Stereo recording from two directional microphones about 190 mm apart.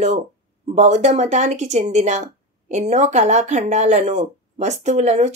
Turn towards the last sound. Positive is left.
turn(degrees=-35)  # may be behind; listen again after turning